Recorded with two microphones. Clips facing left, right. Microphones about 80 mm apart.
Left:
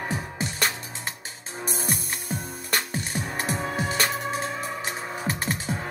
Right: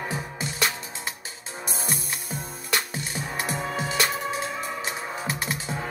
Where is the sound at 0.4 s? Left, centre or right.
Left.